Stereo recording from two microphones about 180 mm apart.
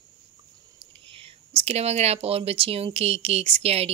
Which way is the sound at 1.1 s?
30° right (ahead or behind).